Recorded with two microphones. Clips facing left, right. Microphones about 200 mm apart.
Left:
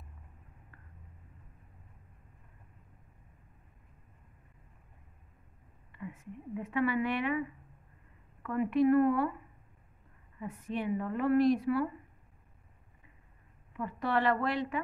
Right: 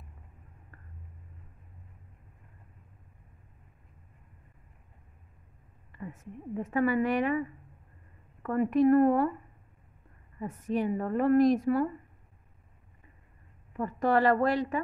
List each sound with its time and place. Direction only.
5.9 s speech: 40° right (ahead or behind)
10.4 s speech: 45° right (ahead or behind)
13.7 s speech: 45° right (ahead or behind)